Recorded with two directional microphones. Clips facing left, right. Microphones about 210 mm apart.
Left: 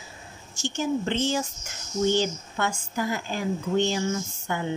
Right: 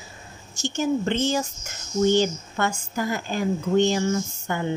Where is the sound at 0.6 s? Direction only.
45° right (ahead or behind).